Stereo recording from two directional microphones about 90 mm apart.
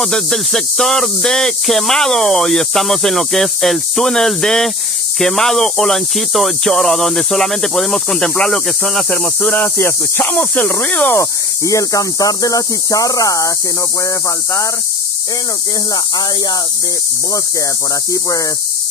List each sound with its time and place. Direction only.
0.0 s speech: 5° left (ahead or behind)
9.4 s speech: 20° left (ahead or behind)
11.1 s speech: 35° left (ahead or behind)